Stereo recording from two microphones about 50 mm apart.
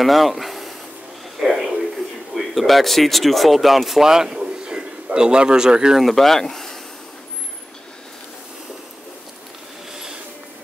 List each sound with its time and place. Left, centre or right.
0.0 s a sound: centre
2.3 s speech: centre
5.9 s speech: centre